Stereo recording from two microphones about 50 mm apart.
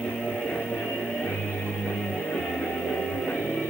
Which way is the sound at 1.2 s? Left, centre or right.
Left.